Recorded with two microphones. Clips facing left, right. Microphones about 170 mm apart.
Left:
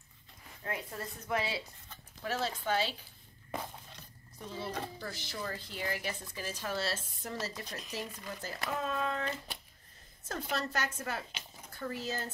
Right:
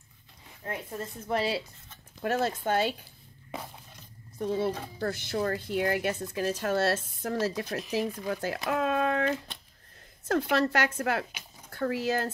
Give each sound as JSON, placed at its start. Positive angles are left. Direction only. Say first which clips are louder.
{"t": 0.7, "sound": "a woman's voice", "louder": "right 4 dB", "side_deg": -25}
{"t": 2.2, "sound": "speech", "louder": "right 6 dB", "side_deg": -50}
{"t": 4.4, "sound": "speech", "louder": "right 10 dB", "side_deg": -55}
{"t": 7.9, "sound": "speech", "louder": "right 12 dB", "side_deg": -75}
{"t": 8.6, "sound": "a sound", "louder": "right 7 dB", "side_deg": -70}
{"t": 10.2, "sound": "speech", "louder": "right 11 dB", "side_deg": -65}